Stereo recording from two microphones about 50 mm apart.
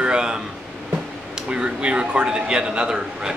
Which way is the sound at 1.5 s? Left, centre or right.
Right.